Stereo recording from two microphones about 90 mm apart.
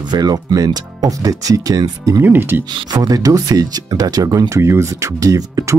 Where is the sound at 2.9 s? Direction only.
45° right (ahead or behind).